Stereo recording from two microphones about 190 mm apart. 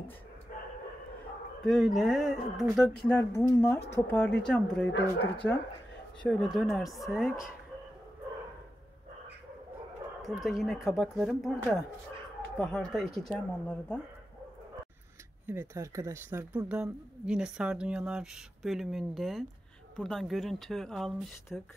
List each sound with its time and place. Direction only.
0.5 s bow-wow: 45° left (ahead or behind)
1.6 s speech: centre (ahead or behind)
3.1 s speech: 15° left (ahead or behind)
4.9 s speech: 65° left (ahead or behind)
6.2 s speech: centre (ahead or behind)
10.4 s speech: centre (ahead or behind)
15.4 s speech: 15° right (ahead or behind)